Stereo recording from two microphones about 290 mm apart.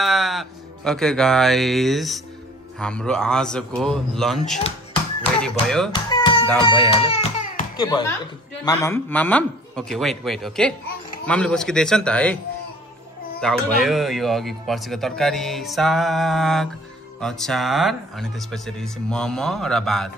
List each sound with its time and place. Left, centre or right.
0.0 s speech: centre
5.9 s music: centre
8.6 s speech: centre
13.4 s speech: centre